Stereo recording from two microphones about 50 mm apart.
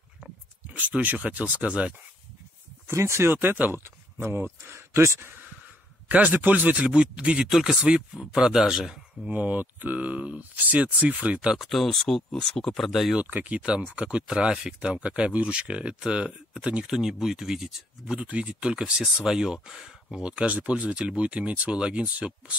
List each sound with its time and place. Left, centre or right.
0.7 s speech: right
2.9 s speech: right
3.3 s speech: right
4.2 s speech: right
6.0 s speech: right
6.9 s speech: right
7.4 s speech: centre
9.3 s speech: right
11.5 s speech: centre
13.2 s speech: right
13.6 s speech: right
18.2 s speech: right